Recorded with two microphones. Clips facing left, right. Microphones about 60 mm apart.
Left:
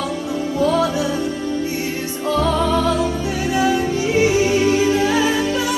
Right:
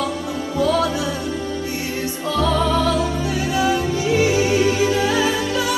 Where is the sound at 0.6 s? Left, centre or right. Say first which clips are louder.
Left 1 dB; left.